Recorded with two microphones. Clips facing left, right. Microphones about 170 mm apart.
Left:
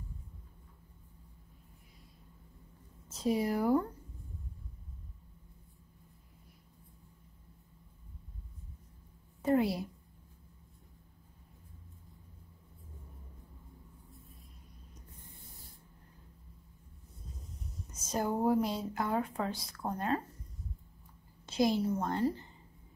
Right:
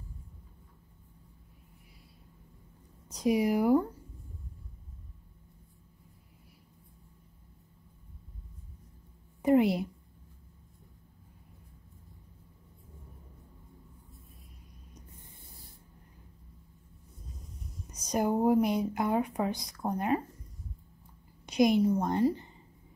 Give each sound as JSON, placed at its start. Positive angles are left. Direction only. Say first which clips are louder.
{"t": 3.1, "sound": "speech", "louder": "right 4 dB", "side_deg": -15}
{"t": 9.4, "sound": "a sound", "louder": "right 5 dB", "side_deg": -20}
{"t": 17.9, "sound": "speech", "louder": "right 5 dB", "side_deg": -15}
{"t": 21.5, "sound": "speech", "louder": "right 5 dB", "side_deg": -15}